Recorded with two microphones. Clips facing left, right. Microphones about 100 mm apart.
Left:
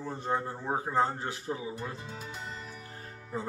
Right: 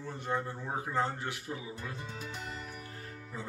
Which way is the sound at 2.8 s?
30° left (ahead or behind).